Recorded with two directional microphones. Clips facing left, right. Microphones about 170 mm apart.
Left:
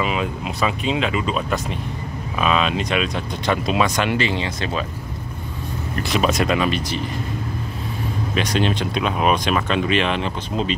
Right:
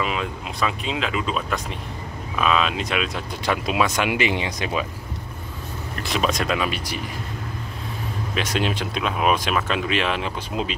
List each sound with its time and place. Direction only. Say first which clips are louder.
0.0 s speech: left 3 dB; centre (ahead or behind); by 4.8 s 15° right (ahead or behind)
6.0 s speech: left 3 dB; centre (ahead or behind)
8.4 s speech: left 3 dB; 5° right (ahead or behind)